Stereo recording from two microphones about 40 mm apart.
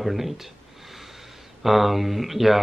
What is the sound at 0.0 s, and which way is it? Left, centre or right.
Speech, centre.